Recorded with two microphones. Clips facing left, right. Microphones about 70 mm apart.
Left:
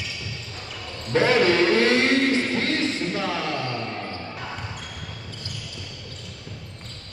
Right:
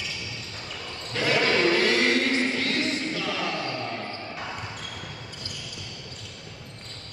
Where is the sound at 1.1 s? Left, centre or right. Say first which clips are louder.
Left 5 dB; left.